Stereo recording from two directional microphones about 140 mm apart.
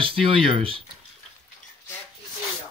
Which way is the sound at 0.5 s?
40° right (ahead or behind).